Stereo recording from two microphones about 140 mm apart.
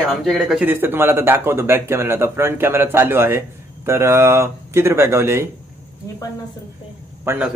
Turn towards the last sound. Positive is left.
turn(degrees=-20)  # may be behind; listen again after turning